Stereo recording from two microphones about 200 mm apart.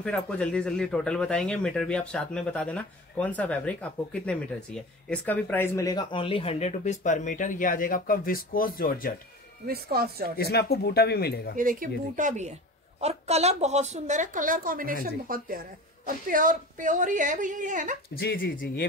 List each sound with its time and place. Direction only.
0.0 s speech: 5° left (ahead or behind); by 9.1 s 45° left (ahead or behind)
9.7 s speech: 50° right (ahead or behind)
10.3 s speech: 50° left (ahead or behind)
11.5 s a woman's voice: 45° right (ahead or behind)
18.1 s speech: 45° left (ahead or behind)